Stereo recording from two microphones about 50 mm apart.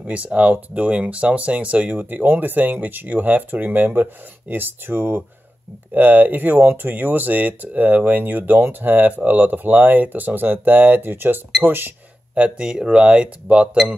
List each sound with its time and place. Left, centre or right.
0.0 s speech: right
2.0 s speech: right
12.4 s speech: right